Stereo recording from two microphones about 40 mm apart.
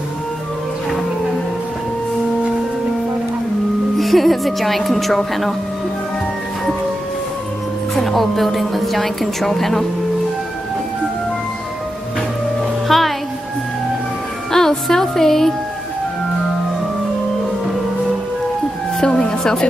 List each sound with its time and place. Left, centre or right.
4.0 s a woman's voice: centre
7.9 s a woman's voice: centre
12.8 s music: centre
14.5 s speech: centre
19.0 s music: centre